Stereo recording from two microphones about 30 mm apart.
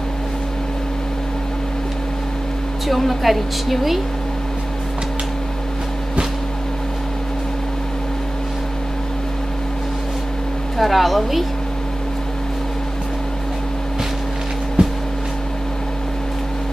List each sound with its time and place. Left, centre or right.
2.9 s a woman's voice: centre
10.8 s a woman's voice: centre
14.8 s music: right